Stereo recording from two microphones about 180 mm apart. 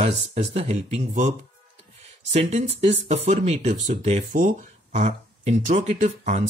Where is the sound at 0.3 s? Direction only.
35° right (ahead or behind).